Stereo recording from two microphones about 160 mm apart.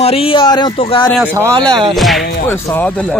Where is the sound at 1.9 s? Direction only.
Centre (ahead or behind).